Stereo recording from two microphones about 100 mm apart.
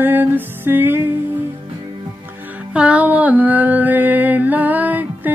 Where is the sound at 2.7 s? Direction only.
15° right (ahead or behind).